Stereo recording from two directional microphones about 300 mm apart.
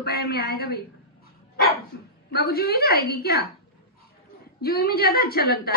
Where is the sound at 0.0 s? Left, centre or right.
Left.